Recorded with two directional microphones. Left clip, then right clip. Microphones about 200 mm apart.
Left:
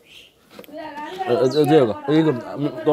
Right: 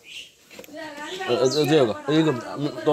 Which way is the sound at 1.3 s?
30° left (ahead or behind).